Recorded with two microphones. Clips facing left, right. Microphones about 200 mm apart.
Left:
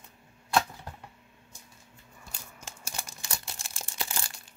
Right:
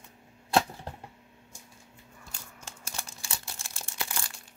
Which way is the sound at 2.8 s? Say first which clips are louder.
Left 1 dB; 15° left (ahead or behind).